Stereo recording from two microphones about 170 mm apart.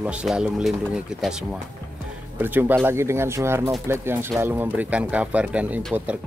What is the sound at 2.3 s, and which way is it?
Speech, 10° right (ahead or behind).